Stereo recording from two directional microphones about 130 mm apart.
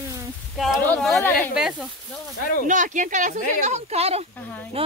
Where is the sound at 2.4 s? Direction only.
90° left.